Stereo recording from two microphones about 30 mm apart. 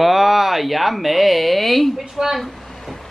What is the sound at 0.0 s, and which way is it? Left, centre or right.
Speech, centre.